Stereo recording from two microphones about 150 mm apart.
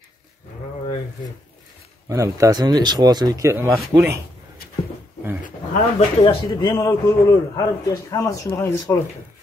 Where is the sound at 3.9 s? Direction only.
30° right (ahead or behind).